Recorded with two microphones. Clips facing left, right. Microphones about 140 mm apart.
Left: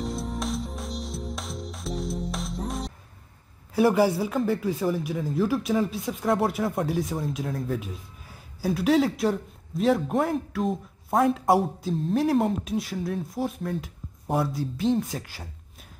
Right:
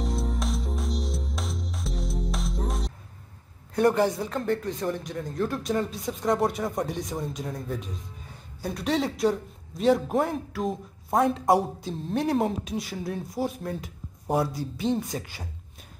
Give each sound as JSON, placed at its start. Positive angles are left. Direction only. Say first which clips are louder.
{"t": 0.0, "sound": "music", "louder": "even", "side_deg": 0}
{"t": 3.7, "sound": "speech", "louder": "left 2 dB", "side_deg": 5}